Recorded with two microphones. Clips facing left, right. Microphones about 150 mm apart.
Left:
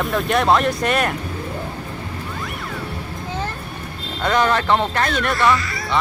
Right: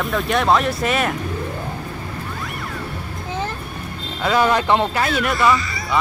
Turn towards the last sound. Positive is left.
turn(degrees=0)  # may be behind; listen again after turning